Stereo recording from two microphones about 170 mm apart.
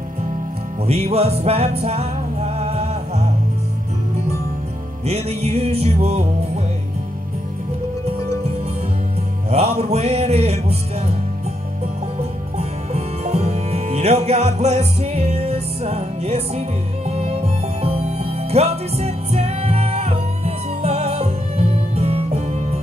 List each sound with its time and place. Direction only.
0.8 s music: 40° right (ahead or behind)
5.0 s music: 40° right (ahead or behind)
9.5 s music: 35° right (ahead or behind)
12.5 s music: 40° right (ahead or behind)